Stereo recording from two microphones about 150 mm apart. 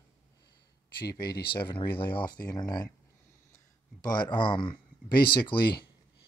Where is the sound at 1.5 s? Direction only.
35° left (ahead or behind).